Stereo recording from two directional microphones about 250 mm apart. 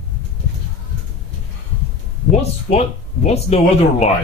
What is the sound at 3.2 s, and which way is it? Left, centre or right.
Speech, left.